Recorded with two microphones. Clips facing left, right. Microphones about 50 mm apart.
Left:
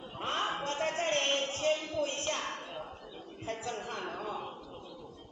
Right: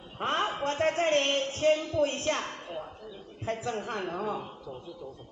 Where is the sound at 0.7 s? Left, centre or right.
Right.